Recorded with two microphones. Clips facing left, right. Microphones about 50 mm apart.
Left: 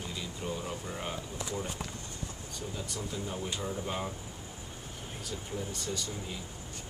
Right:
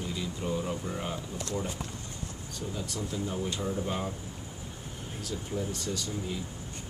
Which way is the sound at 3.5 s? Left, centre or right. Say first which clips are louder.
Right 3 dB; centre.